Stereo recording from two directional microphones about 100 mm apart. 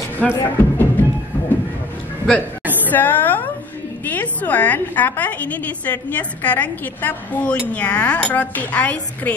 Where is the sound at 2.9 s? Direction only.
20° left (ahead or behind).